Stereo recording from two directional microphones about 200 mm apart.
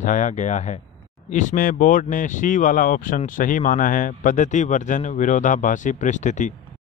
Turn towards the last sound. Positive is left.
turn(degrees=40)  # may be behind; listen again after turning